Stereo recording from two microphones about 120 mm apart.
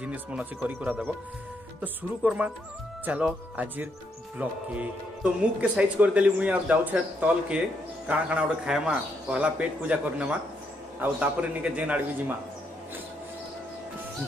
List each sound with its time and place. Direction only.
0.0 s a man's voice: 10° right (ahead or behind)